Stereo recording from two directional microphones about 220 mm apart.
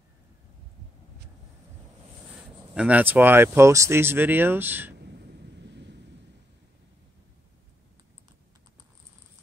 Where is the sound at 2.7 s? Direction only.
5° right (ahead or behind).